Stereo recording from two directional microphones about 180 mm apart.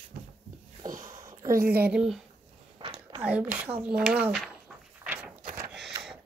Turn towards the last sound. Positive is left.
turn(degrees=-5)  # may be behind; listen again after turning